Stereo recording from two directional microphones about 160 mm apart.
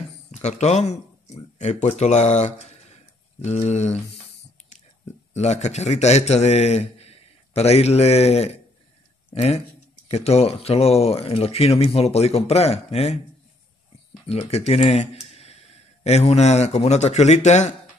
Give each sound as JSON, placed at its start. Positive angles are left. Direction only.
{"t": 0.3, "sound": "speech", "side_deg": 45}
{"t": 5.3, "sound": "a man's voice", "side_deg": 45}
{"t": 14.5, "sound": "speech", "side_deg": 40}